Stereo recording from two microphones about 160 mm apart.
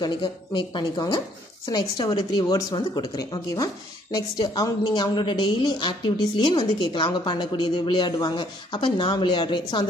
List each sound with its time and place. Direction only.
0.0 s speech: 30° left (ahead or behind)